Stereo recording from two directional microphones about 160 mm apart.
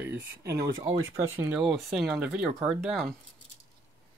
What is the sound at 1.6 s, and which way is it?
Speech, centre (ahead or behind).